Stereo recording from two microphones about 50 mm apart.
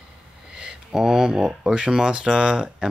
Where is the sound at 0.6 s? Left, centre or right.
Centre.